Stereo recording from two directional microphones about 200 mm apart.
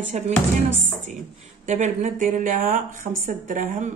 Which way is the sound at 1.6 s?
35° right (ahead or behind).